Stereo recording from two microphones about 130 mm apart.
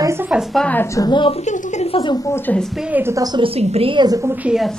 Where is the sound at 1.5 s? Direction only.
60° left (ahead or behind).